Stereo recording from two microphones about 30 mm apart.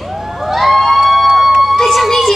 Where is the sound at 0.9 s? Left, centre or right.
Centre.